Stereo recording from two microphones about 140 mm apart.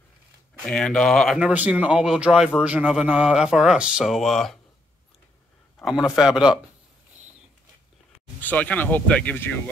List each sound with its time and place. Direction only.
0.7 s a man's voice: 5° left (ahead or behind)
1.4 s a man's voice: 10° right (ahead or behind)
5.8 s a man's voice: centre (ahead or behind)
8.4 s speech: 10° left (ahead or behind)